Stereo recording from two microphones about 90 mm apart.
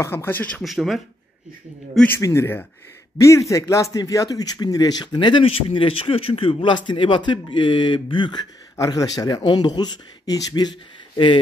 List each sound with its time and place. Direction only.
0.0 s speech: 25° left (ahead or behind)
0.6 s speech: centre (ahead or behind)
2.2 s speech: 30° left (ahead or behind); by 8.4 s 65° left (ahead or behind)
8.7 s speech: 40° left (ahead or behind)
9.4 s speech: 55° left (ahead or behind)